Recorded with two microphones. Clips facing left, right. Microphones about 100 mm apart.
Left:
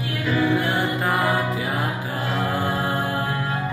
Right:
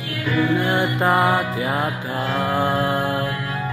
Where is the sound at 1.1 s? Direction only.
90° right.